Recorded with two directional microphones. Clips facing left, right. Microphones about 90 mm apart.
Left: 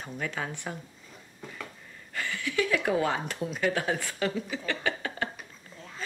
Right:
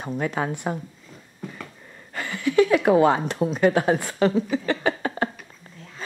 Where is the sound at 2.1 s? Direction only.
40° right (ahead or behind).